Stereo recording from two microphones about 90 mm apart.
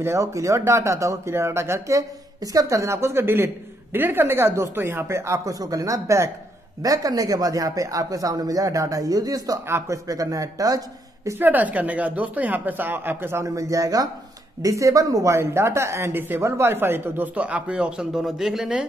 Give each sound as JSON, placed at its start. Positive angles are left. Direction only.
{"t": 0.0, "sound": "speech", "side_deg": -35}
{"t": 9.7, "sound": "a woman's voice", "side_deg": -30}
{"t": 10.0, "sound": "speech", "side_deg": -40}
{"t": 11.2, "sound": "a woman's voice", "side_deg": -20}